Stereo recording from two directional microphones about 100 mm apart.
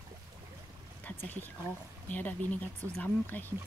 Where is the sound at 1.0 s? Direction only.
20° left (ahead or behind).